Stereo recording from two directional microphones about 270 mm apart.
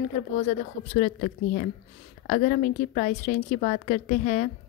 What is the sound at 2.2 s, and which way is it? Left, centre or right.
A woman's voice, left.